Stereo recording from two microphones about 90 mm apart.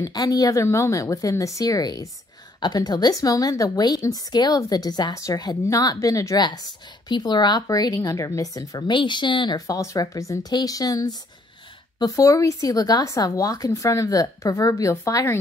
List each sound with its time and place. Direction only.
0.0 s speech: 40° left (ahead or behind)
7.1 s speech: 55° left (ahead or behind)
8.9 s speech: 60° left (ahead or behind)
9.7 s speech: 40° left (ahead or behind)